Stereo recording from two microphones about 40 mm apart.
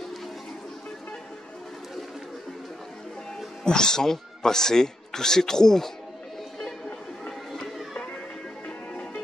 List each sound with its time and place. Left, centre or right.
3.6 s a man's voice: centre
8.6 s music: left